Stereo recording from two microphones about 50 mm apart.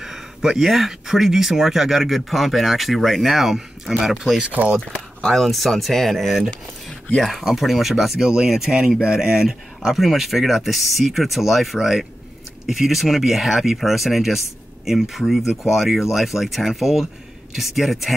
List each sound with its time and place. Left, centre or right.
0.0 s speech: centre
4.5 s speech: right
4.7 s speech: centre